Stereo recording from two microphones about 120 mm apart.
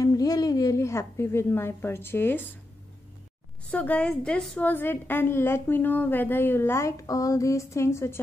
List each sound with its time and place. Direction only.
0.0 s a woman's voice: 30° left (ahead or behind)
3.7 s a woman's voice: 10° left (ahead or behind)